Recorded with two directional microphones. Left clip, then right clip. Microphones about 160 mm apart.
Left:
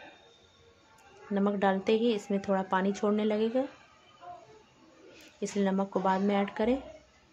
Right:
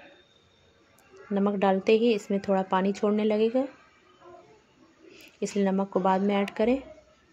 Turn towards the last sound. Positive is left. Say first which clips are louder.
# right 3 dB
turn(degrees=-10)  # may be behind; listen again after turning